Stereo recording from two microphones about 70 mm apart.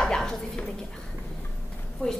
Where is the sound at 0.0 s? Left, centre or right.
Centre.